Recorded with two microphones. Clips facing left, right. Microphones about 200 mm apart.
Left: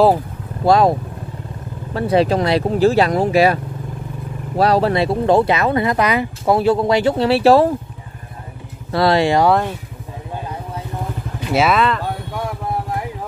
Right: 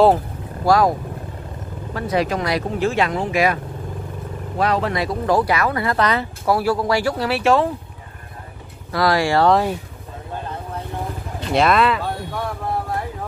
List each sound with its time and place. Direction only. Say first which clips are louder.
0.7 s speech: left 3 dB; 25° left (ahead or behind)
2.0 s speech: left 6 dB; 30° left (ahead or behind)
4.6 s speech: left 5 dB; 35° left (ahead or behind)
8.9 s speech: left 3 dB; 25° left (ahead or behind)
10.3 s vehicle: left 1 dB; 10° left (ahead or behind)
11.4 s speech: left 1 dB; 5° left (ahead or behind)
12.0 s a sound: left 1 dB; 15° left (ahead or behind)